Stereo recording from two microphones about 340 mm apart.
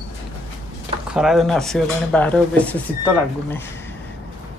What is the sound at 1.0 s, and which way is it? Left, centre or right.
Speech, centre.